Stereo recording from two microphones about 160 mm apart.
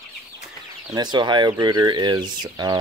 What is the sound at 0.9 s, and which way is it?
Speech, 25° right (ahead or behind).